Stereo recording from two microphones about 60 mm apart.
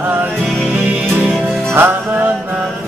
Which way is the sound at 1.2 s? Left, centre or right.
Centre.